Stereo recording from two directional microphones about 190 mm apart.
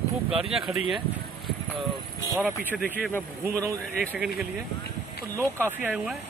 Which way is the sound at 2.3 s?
10° right (ahead or behind).